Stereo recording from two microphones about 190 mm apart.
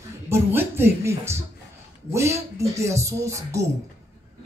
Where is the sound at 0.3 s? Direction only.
10° right (ahead or behind).